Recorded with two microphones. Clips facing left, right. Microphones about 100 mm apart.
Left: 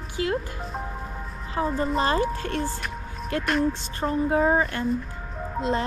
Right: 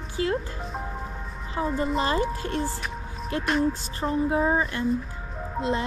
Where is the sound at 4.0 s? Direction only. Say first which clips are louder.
Left 2 dB; 35° left (ahead or behind).